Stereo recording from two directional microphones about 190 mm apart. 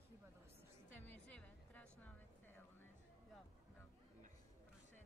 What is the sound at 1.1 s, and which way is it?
Music, 5° left (ahead or behind).